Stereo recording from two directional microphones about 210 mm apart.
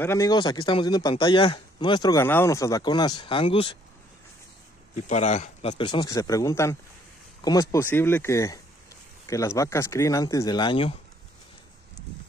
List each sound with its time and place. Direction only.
0.0 s speech: 15° left (ahead or behind)
4.9 s speech: 35° left (ahead or behind)